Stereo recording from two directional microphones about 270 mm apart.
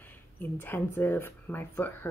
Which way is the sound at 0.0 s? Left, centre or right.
Centre.